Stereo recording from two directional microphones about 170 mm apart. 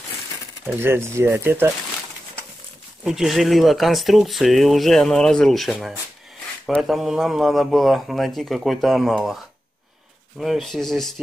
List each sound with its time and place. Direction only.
0.7 s speech: 15° right (ahead or behind)
3.0 s speech: centre (ahead or behind)